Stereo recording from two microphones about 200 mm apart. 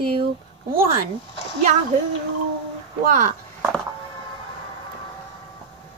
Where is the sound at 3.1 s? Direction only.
35° right (ahead or behind).